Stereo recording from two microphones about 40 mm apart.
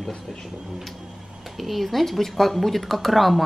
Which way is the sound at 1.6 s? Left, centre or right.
Centre.